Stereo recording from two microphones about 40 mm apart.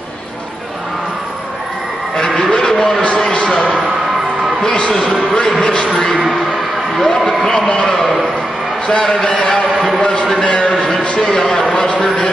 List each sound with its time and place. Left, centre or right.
2.1 s a sound: left
2.7 s a sound: centre
3.3 s basketball bounce: centre
4.9 s a man's voice: centre
5.6 s a man's voice: left
7.0 s speech: centre
9.0 s speech: centre
10.4 s a man's voice: left